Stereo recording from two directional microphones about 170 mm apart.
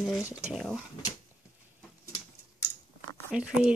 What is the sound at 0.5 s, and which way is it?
Speech, 5° right (ahead or behind).